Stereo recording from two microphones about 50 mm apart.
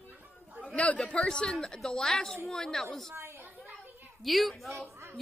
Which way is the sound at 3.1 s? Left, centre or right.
Right.